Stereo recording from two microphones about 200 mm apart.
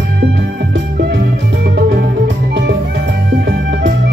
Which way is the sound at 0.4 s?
55° right (ahead or behind).